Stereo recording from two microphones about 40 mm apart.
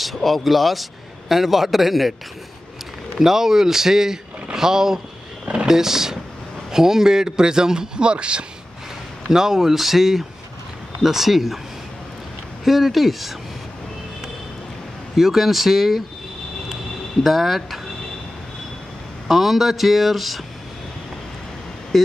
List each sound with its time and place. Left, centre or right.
0.0 s speech: centre
3.2 s a man's voice: centre
4.6 s a sound: centre
5.7 s a man's voice: centre
9.3 s a man's voice: centre
12.6 s speech: centre
15.1 s speech: centre
17.2 s speech: centre
19.2 s speech: centre
21.9 s speech: centre